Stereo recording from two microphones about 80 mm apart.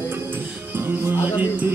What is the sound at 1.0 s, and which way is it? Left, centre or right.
Music, right.